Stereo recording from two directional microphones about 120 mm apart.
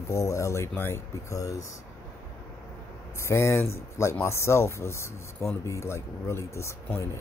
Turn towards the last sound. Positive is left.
turn(degrees=25)  # may be behind; listen again after turning